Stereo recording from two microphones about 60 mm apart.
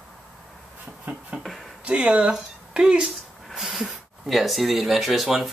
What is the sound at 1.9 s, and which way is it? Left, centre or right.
Speech, right.